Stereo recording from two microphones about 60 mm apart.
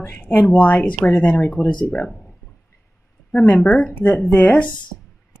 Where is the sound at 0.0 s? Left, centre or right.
Left.